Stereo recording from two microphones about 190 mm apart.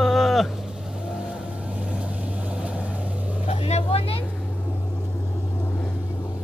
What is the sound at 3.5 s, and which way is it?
Vehicle, 35° left (ahead or behind).